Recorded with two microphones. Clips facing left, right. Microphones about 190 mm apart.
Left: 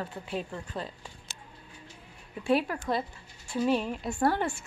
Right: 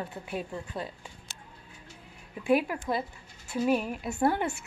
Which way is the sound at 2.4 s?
15° right (ahead or behind).